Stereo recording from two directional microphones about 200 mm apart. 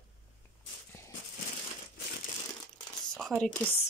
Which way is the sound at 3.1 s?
5° left (ahead or behind).